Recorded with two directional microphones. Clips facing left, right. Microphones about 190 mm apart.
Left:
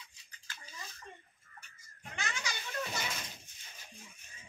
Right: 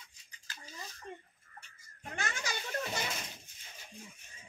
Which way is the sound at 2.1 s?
50° right (ahead or behind).